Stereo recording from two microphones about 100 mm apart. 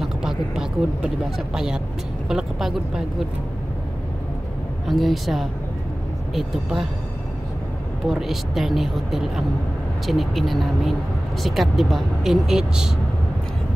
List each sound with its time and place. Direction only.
0.0 s speech: 5° right (ahead or behind)
4.8 s speech: centre (ahead or behind)
8.1 s speech: centre (ahead or behind)